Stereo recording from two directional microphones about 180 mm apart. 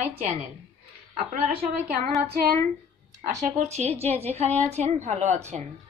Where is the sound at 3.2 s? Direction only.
40° right (ahead or behind).